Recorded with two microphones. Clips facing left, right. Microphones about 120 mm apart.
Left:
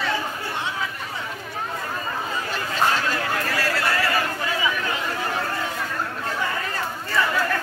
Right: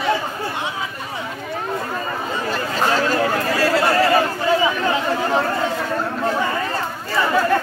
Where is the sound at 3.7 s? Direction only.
30° right (ahead or behind).